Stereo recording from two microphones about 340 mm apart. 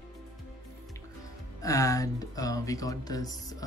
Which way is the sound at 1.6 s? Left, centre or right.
Centre.